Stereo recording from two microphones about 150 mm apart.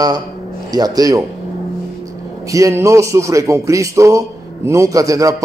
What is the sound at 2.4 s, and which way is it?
A man's voice, 20° right (ahead or behind).